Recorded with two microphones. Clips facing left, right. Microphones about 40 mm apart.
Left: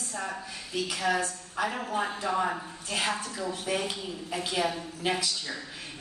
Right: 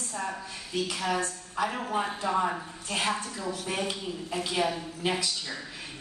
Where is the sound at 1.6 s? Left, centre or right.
Centre.